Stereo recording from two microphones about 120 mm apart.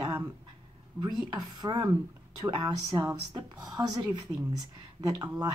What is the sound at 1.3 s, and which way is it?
Speech, 35° right (ahead or behind).